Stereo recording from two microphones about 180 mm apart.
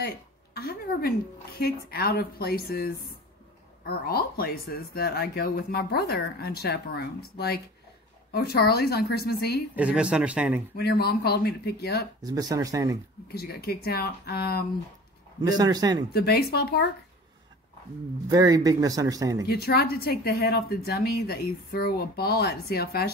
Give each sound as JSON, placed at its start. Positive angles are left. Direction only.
{"t": 0.6, "sound": "a woman's voice", "side_deg": 60}
{"t": 9.8, "sound": "speech", "side_deg": -5}
{"t": 10.8, "sound": "speech", "side_deg": 60}
{"t": 12.2, "sound": "speech", "side_deg": -20}
{"t": 13.3, "sound": "speech", "side_deg": 60}
{"t": 15.4, "sound": "speech", "side_deg": -20}
{"t": 16.1, "sound": "speech", "side_deg": 60}
{"t": 18.3, "sound": "speech", "side_deg": -20}
{"t": 19.4, "sound": "speech", "side_deg": 60}